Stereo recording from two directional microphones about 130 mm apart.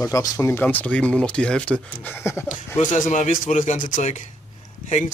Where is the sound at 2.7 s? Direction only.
65° left (ahead or behind).